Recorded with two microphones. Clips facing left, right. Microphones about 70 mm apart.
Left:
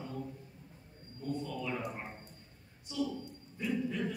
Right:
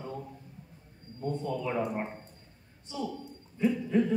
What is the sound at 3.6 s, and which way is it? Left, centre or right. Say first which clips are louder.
Speech: right 8 dB; right.